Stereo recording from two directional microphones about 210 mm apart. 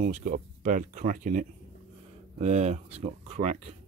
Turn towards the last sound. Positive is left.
turn(degrees=-30)  # may be behind; listen again after turning